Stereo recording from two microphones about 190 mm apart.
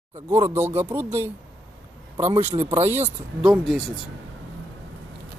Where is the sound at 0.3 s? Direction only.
10° right (ahead or behind).